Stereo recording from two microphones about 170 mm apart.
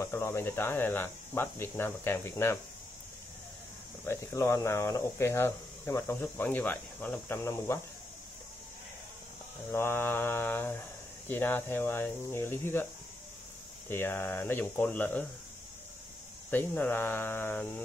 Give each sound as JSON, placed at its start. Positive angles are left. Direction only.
{"t": 0.0, "sound": "speech", "side_deg": 15}
{"t": 4.0, "sound": "speech", "side_deg": 15}
{"t": 9.7, "sound": "speech", "side_deg": 15}
{"t": 13.8, "sound": "speech", "side_deg": 10}
{"t": 16.4, "sound": "speech", "side_deg": 10}